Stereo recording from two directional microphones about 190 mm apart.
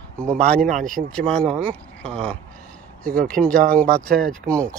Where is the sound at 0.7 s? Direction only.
45° right (ahead or behind).